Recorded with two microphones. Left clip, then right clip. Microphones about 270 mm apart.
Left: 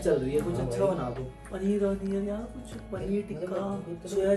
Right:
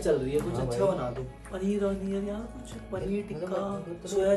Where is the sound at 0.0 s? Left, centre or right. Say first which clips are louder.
Even; centre.